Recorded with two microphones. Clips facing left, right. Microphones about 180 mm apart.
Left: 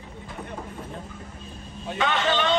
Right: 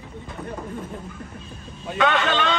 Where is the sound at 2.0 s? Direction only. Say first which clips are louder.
Right 3 dB; 60° right (ahead or behind).